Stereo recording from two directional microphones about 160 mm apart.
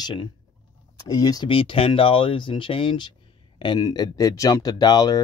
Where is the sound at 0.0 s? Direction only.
30° left (ahead or behind).